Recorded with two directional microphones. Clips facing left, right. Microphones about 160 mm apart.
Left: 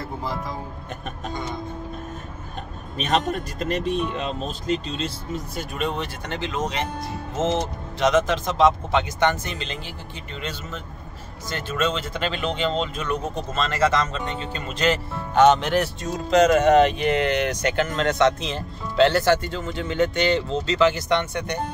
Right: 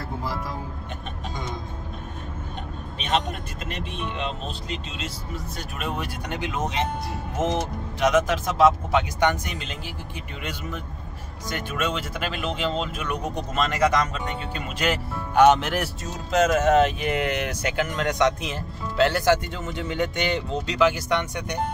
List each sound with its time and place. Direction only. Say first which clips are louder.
0.0 s vehicle: left 1 dB; 5° right (ahead or behind)
3.0 s speech: left 3 dB; 40° left (ahead or behind)
5.6 s speech: left 3 dB; 5° right (ahead or behind)
8.0 s speech: left 1 dB; 10° right (ahead or behind)
11.4 s speech: left 3 dB; 10° right (ahead or behind)